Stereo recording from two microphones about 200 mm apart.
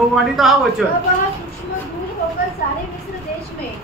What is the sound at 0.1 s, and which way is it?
Speech, centre (ahead or behind).